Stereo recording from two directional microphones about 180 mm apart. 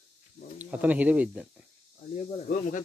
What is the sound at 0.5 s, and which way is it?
Speech, 10° right (ahead or behind).